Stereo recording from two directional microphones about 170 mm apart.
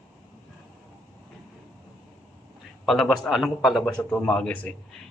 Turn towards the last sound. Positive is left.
turn(degrees=5)  # may be behind; listen again after turning